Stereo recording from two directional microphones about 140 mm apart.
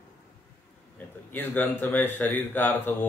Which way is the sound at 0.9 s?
15° left (ahead or behind).